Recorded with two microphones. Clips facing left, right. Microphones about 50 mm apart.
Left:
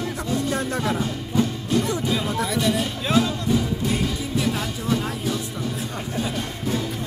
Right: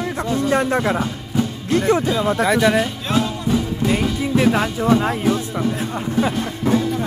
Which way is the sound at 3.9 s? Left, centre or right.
Right.